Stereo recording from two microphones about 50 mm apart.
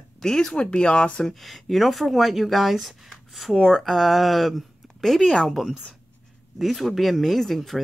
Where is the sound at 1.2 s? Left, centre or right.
Centre.